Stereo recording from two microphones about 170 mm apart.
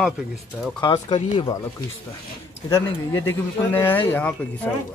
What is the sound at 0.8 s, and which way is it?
Speech, 25° left (ahead or behind).